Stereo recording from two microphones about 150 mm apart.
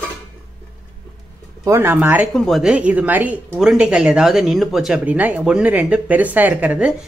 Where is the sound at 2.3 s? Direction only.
Centre (ahead or behind).